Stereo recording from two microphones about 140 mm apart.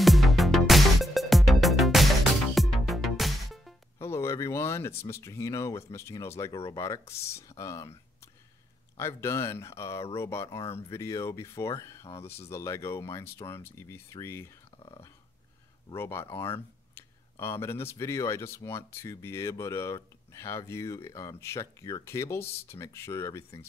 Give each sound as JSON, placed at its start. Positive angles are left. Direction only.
{"t": 0.0, "sound": "music", "side_deg": 0}
{"t": 4.0, "sound": "speech", "side_deg": 20}
{"t": 15.9, "sound": "speech", "side_deg": 15}